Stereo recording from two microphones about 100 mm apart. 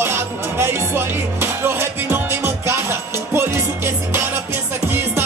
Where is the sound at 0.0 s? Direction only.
25° right (ahead or behind).